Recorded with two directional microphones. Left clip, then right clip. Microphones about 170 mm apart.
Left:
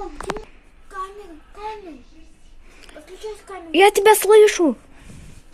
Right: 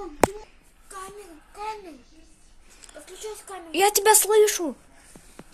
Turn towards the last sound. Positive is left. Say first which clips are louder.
# left 8 dB
turn(degrees=20)  # may be behind; listen again after turning